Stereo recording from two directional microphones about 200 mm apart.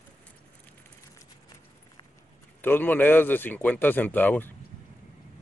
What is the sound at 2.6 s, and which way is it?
Speech, 10° left (ahead or behind).